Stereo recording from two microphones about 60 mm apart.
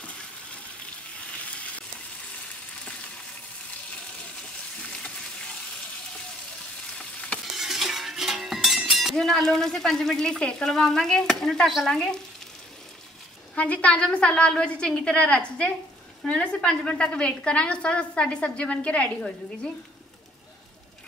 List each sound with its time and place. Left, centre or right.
4.8 s frying: centre
7.5 s a sound: centre
9.1 s speech: centre
11.6 s stir: centre
11.9 s speech: centre
13.6 s a woman's voice: left